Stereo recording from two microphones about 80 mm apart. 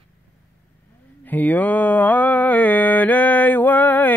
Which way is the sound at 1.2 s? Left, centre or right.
Left.